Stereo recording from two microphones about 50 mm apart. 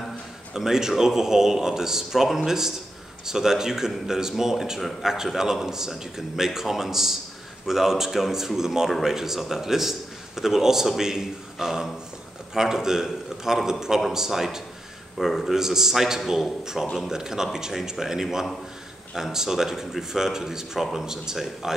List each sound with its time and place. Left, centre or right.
0.5 s a man's voice: centre
15.1 s a man's voice: centre